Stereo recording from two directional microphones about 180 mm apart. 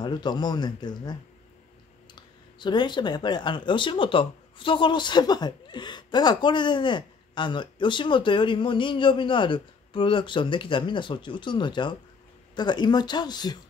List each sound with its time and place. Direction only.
0.0 s speech: 25° left (ahead or behind)
2.1 s speech: 25° left (ahead or behind)